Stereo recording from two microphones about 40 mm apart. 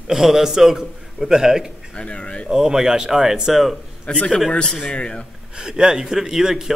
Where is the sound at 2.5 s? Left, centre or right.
Centre.